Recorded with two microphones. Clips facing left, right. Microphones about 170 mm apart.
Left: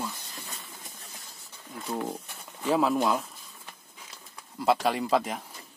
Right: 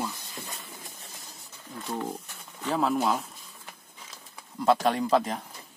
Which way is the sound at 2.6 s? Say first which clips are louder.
Left 2 dB; 5° left (ahead or behind).